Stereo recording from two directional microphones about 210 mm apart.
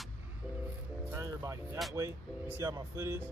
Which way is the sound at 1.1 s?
15° right (ahead or behind).